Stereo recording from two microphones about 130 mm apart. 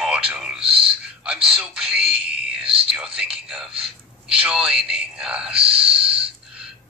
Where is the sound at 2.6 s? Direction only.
45° right (ahead or behind).